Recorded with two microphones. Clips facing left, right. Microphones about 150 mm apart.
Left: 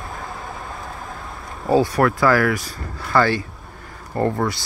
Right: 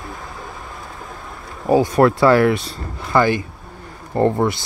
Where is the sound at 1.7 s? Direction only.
20° right (ahead or behind).